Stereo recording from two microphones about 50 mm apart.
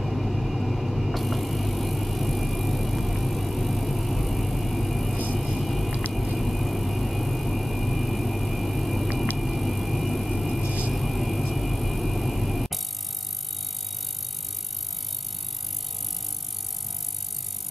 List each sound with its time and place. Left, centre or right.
0.0 s vehicle: centre
10.6 s music: right
10.9 s vehicle: centre